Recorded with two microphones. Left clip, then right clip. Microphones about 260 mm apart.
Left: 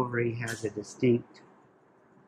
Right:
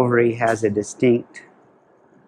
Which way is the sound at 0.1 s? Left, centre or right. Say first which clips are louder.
Right 15 dB; centre.